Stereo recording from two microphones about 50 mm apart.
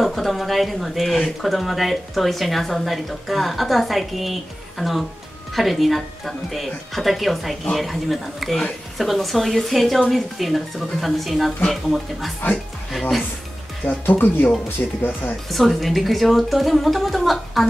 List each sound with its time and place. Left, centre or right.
0.0 s speech: centre
13.8 s speech: left
15.5 s speech: centre